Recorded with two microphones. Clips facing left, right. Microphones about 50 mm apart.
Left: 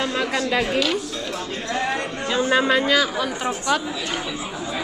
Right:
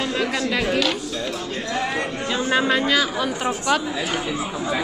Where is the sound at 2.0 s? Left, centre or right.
Centre.